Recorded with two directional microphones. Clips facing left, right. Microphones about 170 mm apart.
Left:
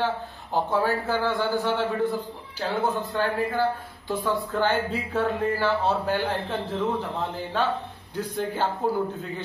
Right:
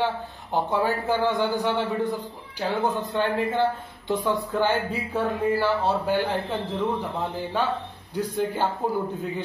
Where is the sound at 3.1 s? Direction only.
20° right (ahead or behind).